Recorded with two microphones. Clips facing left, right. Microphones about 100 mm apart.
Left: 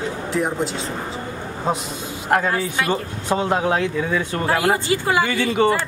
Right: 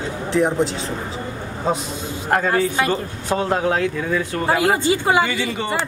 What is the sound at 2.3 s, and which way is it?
Speech, 5° left (ahead or behind).